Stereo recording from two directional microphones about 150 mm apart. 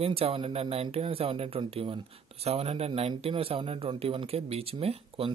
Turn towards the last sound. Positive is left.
turn(degrees=-40)  # may be behind; listen again after turning